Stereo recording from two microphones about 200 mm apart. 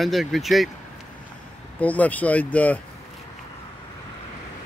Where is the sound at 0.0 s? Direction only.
Centre (ahead or behind).